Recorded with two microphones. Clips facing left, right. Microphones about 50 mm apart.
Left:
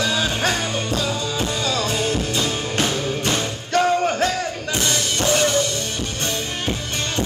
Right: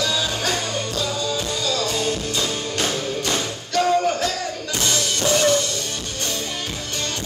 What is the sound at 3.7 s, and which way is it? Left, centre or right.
Music, left.